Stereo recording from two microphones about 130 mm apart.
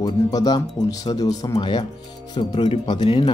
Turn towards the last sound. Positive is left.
turn(degrees=40)  # may be behind; listen again after turning